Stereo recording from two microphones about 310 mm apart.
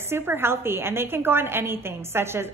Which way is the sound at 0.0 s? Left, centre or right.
Centre.